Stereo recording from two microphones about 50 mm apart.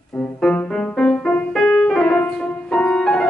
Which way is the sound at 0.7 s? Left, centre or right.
Centre.